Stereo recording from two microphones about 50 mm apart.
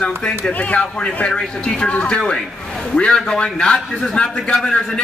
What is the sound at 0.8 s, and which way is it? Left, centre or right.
A man's voice, centre.